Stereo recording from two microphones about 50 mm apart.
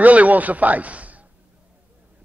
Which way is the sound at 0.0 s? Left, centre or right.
Right.